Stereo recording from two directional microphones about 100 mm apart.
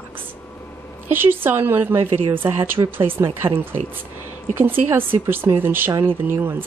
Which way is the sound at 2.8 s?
40° right (ahead or behind).